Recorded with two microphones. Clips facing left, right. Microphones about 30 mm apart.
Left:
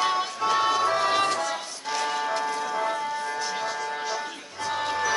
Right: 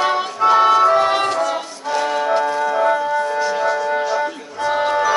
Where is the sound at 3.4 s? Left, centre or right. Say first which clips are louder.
Right 11 dB; centre.